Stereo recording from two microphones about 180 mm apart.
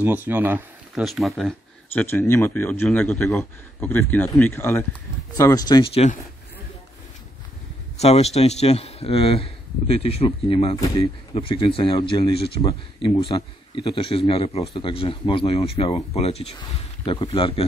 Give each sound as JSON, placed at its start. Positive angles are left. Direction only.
{"t": 0.0, "sound": "speech", "side_deg": -10}
{"t": 2.0, "sound": "a man's voice", "side_deg": 15}
{"t": 8.0, "sound": "speech", "side_deg": 35}